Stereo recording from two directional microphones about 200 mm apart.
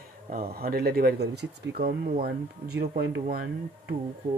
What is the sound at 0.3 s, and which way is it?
Speech, 50° right (ahead or behind).